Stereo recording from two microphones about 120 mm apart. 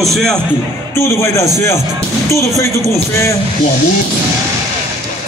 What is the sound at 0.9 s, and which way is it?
Speech, 25° left (ahead or behind).